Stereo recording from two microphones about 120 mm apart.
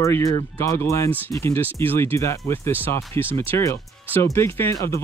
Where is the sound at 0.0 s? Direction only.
25° left (ahead or behind).